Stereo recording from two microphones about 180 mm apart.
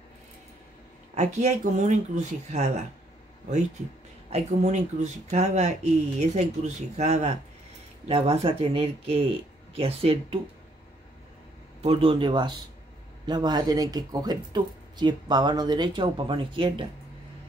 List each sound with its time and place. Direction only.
1.1 s speech: 40° right (ahead or behind)
4.3 s speech: 40° right (ahead or behind)
11.8 s speech: 30° right (ahead or behind)